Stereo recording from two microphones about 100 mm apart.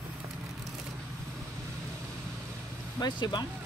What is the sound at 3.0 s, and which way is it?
Speech, 45° left (ahead or behind).